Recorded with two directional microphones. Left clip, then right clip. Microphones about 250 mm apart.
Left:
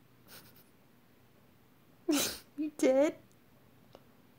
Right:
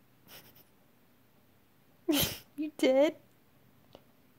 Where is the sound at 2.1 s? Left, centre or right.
Centre.